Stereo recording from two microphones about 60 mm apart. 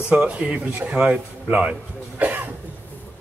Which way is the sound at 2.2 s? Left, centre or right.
Right.